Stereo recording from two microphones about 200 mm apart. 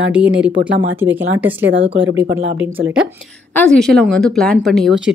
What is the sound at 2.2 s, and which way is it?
Speech, 70° right (ahead or behind).